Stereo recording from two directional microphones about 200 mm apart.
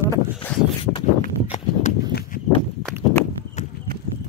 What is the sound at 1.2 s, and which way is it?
Horse, 35° left (ahead or behind).